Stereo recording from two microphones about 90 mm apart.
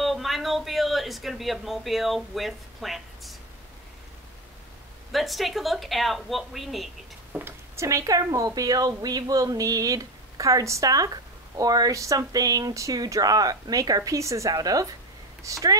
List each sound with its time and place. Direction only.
0.0 s speech: centre (ahead or behind)
5.1 s a woman's voice: centre (ahead or behind)
7.3 s speech: 25° right (ahead or behind)